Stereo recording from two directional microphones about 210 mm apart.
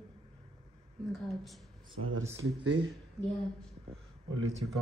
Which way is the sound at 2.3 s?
65° right (ahead or behind).